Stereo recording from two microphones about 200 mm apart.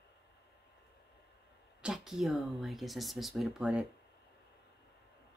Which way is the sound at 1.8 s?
Centre (ahead or behind).